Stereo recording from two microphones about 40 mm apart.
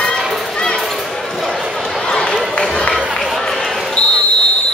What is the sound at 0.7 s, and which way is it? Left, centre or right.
Basketball bounce, centre.